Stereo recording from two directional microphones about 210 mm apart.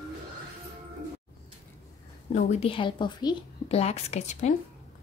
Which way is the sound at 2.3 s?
35° left (ahead or behind).